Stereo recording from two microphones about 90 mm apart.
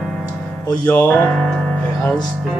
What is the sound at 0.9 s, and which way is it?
Music, 20° left (ahead or behind).